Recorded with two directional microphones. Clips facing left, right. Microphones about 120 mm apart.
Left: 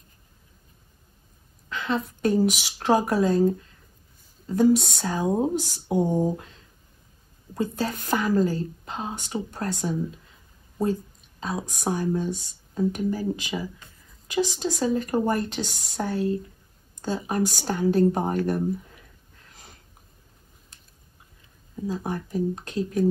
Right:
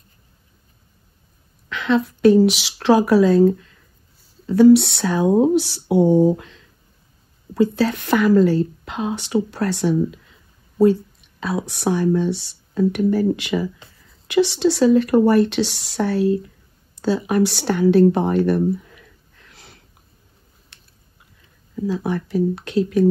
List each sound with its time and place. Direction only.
1.7 s a woman's voice: 90° right
20.7 s a sound: 90° right
21.8 s a woman's voice: 90° right